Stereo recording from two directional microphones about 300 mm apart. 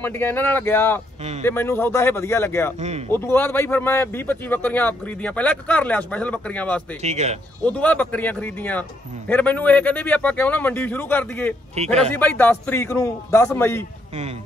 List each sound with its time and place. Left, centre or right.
0.0 s a man's voice: centre
2.8 s speech: right
3.1 s speech: centre
7.0 s speech: right
7.6 s a man's voice: centre
14.1 s speech: centre